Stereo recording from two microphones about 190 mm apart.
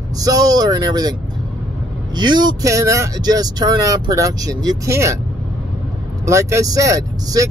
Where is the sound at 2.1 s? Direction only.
20° right (ahead or behind).